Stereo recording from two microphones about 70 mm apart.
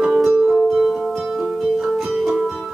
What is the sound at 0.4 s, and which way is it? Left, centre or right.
Music, centre.